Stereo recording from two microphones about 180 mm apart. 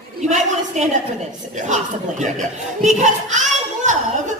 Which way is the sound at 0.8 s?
40° right (ahead or behind).